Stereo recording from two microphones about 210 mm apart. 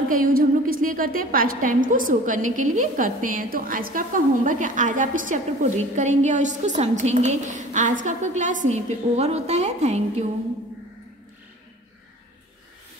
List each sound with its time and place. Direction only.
0.1 s a woman's voice: 45° right (ahead or behind)